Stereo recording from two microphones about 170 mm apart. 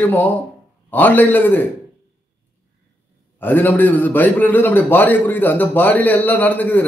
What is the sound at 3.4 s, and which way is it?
A man's voice, 10° left (ahead or behind).